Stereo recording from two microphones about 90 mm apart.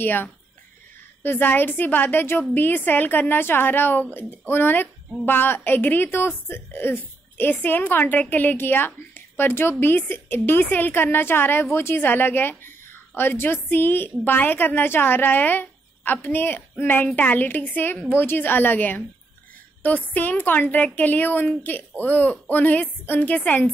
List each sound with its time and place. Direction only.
0.0 s a woman's voice: 20° left (ahead or behind)